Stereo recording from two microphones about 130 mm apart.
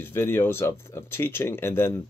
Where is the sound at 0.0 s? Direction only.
15° left (ahead or behind).